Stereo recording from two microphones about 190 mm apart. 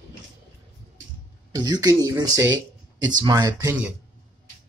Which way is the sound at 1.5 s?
20° right (ahead or behind).